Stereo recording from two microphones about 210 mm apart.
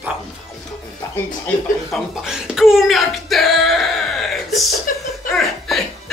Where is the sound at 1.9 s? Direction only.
Centre (ahead or behind).